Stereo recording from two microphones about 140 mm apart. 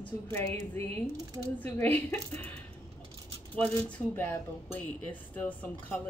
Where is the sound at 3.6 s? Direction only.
15° left (ahead or behind).